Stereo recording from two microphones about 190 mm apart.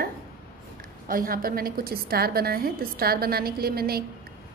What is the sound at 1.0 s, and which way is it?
A woman's voice, 50° right (ahead or behind).